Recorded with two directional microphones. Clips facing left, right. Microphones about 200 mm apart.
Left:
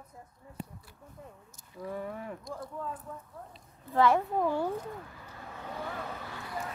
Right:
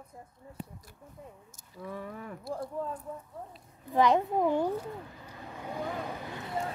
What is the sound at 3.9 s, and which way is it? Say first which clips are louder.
Speech: right 1 dB; 15° right (ahead or behind).